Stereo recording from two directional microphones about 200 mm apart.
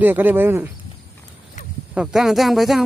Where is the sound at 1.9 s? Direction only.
Centre (ahead or behind).